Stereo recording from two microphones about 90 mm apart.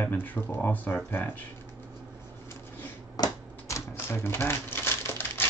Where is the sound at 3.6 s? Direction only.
30° left (ahead or behind).